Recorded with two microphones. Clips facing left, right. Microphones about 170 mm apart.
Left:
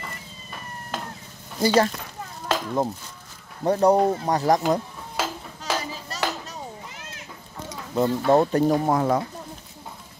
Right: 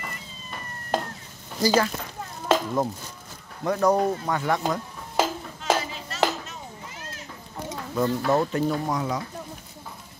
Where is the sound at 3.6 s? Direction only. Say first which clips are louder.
Left 3 dB; 30° left (ahead or behind).